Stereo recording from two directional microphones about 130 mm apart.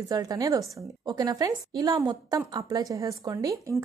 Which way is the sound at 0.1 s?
30° right (ahead or behind).